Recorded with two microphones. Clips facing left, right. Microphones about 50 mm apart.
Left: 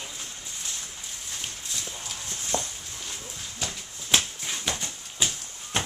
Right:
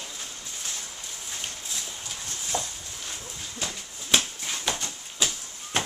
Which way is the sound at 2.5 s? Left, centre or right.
Left.